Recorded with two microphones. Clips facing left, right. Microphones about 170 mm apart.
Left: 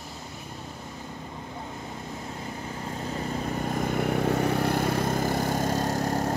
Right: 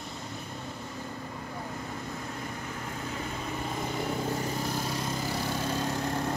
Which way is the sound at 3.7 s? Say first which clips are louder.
Left 6 dB; 60° left (ahead or behind).